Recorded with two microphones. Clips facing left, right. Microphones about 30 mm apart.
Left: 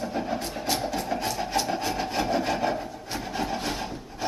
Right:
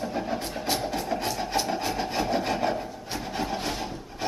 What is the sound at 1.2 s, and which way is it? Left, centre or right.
Rub, centre.